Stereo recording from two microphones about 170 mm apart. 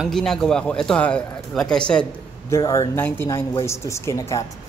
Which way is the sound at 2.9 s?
10° left (ahead or behind).